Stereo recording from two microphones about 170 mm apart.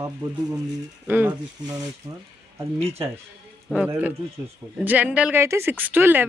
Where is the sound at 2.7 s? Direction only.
35° right (ahead or behind).